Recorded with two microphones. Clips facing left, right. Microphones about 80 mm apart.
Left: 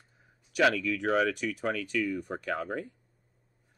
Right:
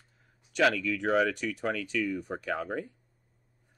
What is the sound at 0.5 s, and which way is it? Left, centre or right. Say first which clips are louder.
Speech: even; centre.